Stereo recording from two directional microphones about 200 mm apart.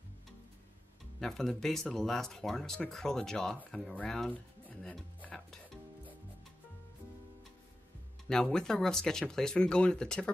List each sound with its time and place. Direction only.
1.2 s speech: centre (ahead or behind)
3.7 s music: centre (ahead or behind)
8.3 s speech: 5° left (ahead or behind)